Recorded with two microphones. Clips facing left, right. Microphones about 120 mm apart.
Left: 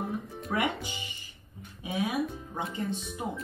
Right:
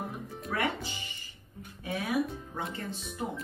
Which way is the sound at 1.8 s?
15° left (ahead or behind).